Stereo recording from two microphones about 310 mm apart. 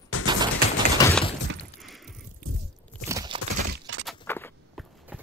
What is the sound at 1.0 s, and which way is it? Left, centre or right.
Shatter, centre.